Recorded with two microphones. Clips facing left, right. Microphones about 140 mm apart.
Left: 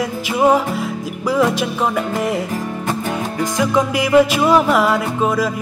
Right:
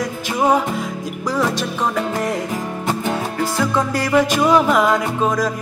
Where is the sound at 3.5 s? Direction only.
15° left (ahead or behind).